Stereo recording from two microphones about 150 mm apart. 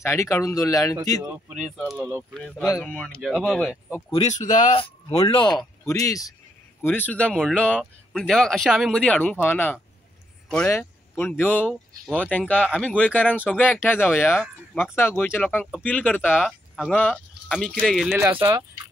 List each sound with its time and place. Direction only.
0.0 s speech: 20° left (ahead or behind)
1.2 s speech: 15° right (ahead or behind)
2.0 s speech: 10° left (ahead or behind)
4.2 s speech: 50° left (ahead or behind)
4.7 s a sound: 35° left (ahead or behind)
5.3 s speech: 30° left (ahead or behind); by 18.2 s centre (ahead or behind)
18.2 s speech: 15° right (ahead or behind)